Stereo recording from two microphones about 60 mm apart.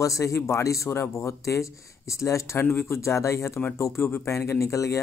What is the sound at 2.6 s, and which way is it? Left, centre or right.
Speech, left.